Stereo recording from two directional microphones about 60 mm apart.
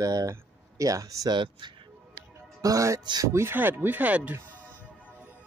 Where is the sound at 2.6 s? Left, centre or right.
Right.